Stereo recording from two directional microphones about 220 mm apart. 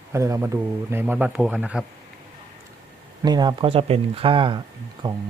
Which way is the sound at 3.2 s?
20° right (ahead or behind).